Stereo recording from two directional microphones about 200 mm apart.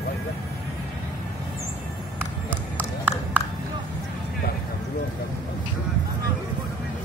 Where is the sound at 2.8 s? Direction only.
10° right (ahead or behind).